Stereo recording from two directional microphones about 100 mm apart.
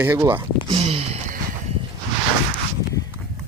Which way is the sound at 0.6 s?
70° right (ahead or behind).